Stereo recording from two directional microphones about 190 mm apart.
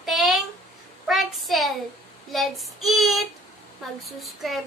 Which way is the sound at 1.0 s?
Centre (ahead or behind).